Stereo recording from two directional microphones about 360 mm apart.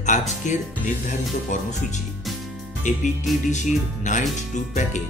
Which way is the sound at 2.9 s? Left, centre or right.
Centre.